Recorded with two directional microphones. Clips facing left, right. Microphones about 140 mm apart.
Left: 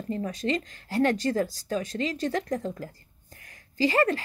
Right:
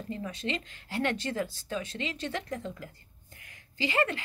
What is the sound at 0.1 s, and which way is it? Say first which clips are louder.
A woman's voice: left 7 dB; 40° left (ahead or behind).